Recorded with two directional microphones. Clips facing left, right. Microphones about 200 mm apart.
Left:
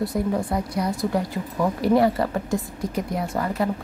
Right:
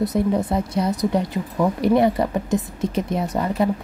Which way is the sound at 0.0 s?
20° right (ahead or behind).